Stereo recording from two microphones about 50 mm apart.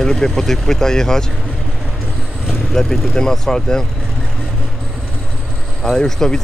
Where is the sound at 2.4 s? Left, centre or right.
Centre.